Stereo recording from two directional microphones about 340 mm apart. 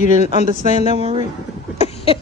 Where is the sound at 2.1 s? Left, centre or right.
Centre.